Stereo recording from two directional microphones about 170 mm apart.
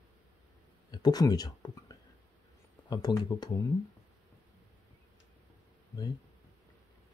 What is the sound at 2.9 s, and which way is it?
Speech, 25° left (ahead or behind).